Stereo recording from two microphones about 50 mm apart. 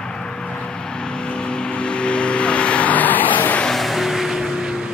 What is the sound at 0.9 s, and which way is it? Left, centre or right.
Vehicle, centre.